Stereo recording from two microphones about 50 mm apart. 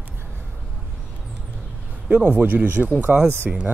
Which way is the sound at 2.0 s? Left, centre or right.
Right.